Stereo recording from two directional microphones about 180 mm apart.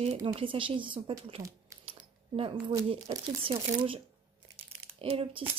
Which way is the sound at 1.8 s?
30° right (ahead or behind).